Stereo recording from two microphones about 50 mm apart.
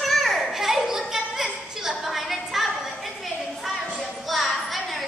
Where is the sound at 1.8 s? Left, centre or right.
Centre.